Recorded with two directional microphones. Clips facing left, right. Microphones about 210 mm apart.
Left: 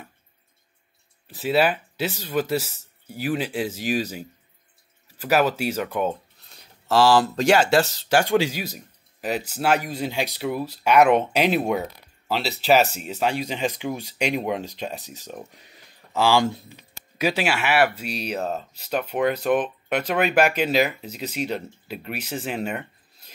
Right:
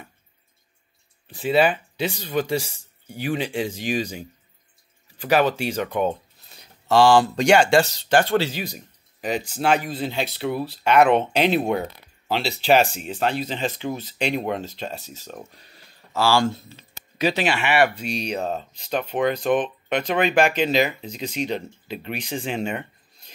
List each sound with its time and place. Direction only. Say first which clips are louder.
1.2 s speech: right 2 dB; 5° left (ahead or behind)